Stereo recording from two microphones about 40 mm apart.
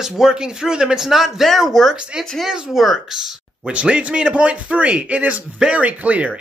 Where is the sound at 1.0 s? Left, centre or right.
Centre.